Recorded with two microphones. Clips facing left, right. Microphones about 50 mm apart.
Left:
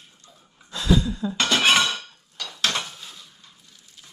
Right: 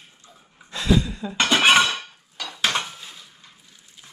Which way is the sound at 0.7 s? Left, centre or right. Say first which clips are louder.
Right 1 dB; right.